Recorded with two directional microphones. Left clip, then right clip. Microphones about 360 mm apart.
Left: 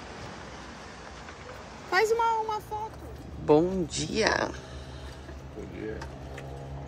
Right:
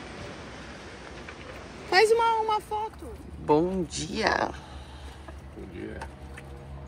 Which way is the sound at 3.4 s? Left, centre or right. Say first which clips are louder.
Left 1 dB; centre.